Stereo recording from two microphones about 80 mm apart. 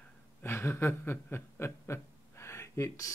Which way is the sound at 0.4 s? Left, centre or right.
Left.